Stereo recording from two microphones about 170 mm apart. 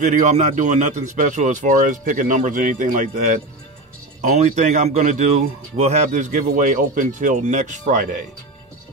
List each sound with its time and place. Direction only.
0.0 s a man's voice: 45° right (ahead or behind)